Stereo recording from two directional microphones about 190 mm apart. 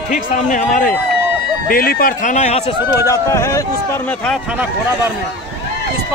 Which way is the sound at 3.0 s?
15° left (ahead or behind).